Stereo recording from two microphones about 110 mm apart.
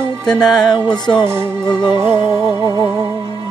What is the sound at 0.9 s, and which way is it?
Music, 40° left (ahead or behind).